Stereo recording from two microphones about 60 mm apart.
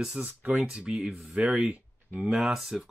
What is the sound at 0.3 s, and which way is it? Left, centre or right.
Speech, right.